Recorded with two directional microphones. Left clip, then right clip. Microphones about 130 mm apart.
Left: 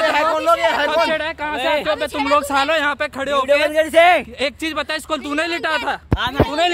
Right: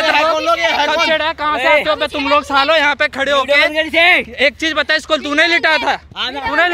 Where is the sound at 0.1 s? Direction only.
40° left (ahead or behind).